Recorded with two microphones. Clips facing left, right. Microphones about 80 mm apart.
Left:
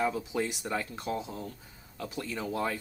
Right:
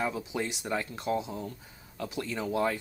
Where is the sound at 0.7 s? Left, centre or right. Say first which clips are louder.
Right 2 dB; centre.